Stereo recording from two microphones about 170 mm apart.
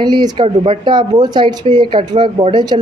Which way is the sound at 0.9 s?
25° right (ahead or behind).